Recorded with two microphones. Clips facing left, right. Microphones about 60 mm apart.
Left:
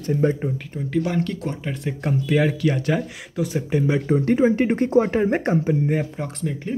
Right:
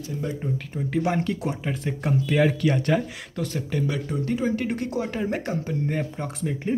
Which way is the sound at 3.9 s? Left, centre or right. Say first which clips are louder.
Left 7 dB; left.